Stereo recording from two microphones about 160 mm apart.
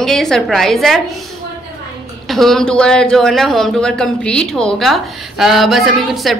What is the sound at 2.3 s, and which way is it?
Speech, centre (ahead or behind).